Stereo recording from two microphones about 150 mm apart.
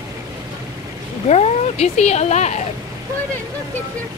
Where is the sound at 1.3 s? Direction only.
45° left (ahead or behind).